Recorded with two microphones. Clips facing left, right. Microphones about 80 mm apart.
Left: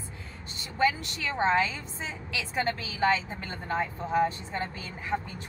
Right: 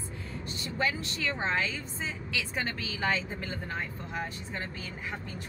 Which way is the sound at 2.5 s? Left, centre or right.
Centre.